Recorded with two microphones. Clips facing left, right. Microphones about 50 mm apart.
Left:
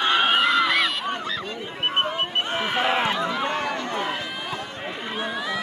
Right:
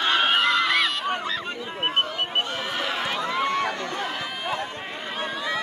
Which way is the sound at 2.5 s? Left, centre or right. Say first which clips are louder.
Left 5 dB; left.